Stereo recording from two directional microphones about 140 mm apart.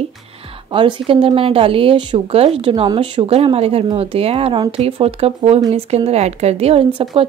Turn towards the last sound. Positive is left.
turn(degrees=-40)  # may be behind; listen again after turning